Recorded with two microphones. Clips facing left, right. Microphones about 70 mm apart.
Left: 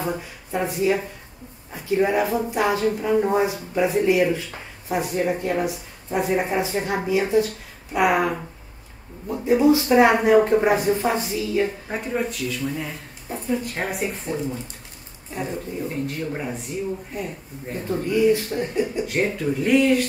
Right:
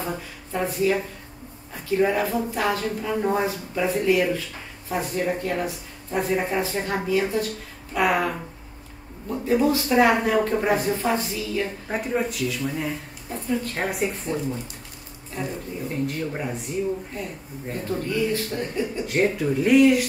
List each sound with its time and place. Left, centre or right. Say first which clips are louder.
0.0 s speech: left 3 dB; centre
11.9 s speech: right 1 dB; centre
15.4 s speech: left 1 dB; centre
15.9 s speech: right 4 dB; centre
17.7 s speech: left 4 dB; centre
19.0 s speech: right 1 dB; centre